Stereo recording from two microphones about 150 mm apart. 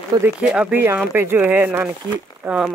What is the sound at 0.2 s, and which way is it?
Speech, 5° right (ahead or behind).